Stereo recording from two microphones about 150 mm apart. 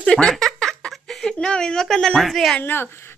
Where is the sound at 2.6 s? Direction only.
15° left (ahead or behind).